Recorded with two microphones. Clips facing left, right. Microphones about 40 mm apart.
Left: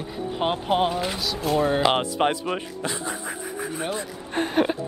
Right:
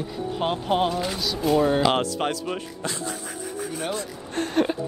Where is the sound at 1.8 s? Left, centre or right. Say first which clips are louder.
Left 1 dB; centre.